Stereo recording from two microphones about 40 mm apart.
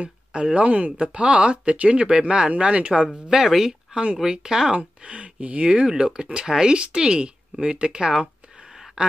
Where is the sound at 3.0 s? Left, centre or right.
Centre.